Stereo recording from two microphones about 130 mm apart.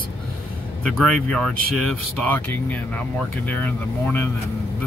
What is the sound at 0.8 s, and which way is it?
Speech, 5° left (ahead or behind).